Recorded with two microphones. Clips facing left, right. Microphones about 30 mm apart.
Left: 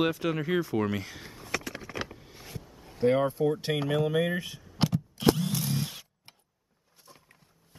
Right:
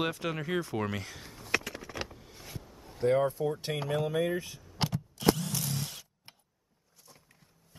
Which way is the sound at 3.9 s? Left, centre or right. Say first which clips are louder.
Left 2 dB; centre.